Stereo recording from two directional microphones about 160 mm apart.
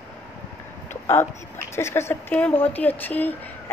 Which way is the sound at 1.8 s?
15° left (ahead or behind).